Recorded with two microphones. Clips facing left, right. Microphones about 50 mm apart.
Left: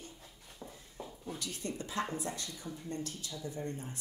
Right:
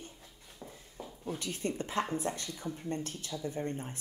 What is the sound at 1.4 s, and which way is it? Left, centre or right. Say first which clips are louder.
A woman's voice: right 5 dB; right.